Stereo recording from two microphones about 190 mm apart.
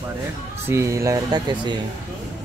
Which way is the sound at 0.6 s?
15° right (ahead or behind).